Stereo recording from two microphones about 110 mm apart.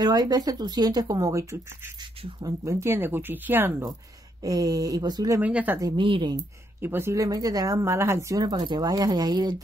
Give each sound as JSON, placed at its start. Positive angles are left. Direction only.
{"t": 0.0, "sound": "speech", "side_deg": -35}
{"t": 4.4, "sound": "speech", "side_deg": -35}
{"t": 5.4, "sound": "speech", "side_deg": -15}
{"t": 5.9, "sound": "speech", "side_deg": -50}
{"t": 6.8, "sound": "speech", "side_deg": -20}